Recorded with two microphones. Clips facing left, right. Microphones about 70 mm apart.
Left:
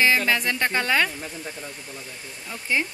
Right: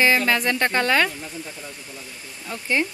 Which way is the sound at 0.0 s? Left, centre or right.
Centre.